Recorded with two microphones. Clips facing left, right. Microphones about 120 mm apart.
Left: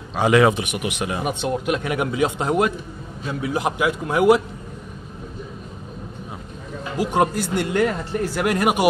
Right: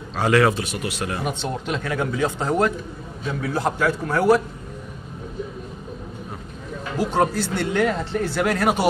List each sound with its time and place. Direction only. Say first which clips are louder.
0.1 s speech: left 2 dB; 15° left (ahead or behind)
6.8 s speech: left 1 dB; 10° left (ahead or behind)